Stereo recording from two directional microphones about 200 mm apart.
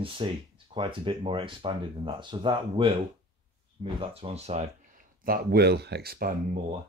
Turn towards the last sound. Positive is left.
turn(degrees=-45)  # may be behind; listen again after turning